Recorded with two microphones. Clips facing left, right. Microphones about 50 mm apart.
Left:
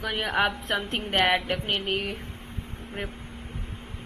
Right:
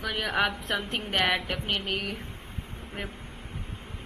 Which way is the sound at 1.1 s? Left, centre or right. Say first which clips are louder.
Left 3 dB; centre.